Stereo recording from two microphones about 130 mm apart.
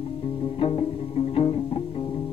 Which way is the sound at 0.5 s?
45° left (ahead or behind).